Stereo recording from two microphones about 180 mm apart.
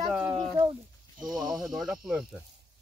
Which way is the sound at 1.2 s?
25° right (ahead or behind).